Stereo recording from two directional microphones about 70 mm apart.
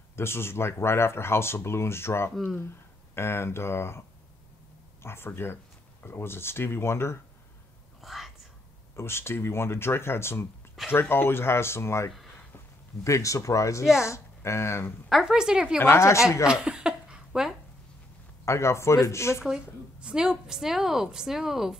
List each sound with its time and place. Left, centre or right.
0.1 s speech: left
5.0 s speech: left
8.0 s whispering: centre
8.9 s speech: left
15.0 s a woman's voice: centre
15.8 s speech: left
16.4 s speech: centre
18.4 s speech: left
19.4 s a woman's voice: centre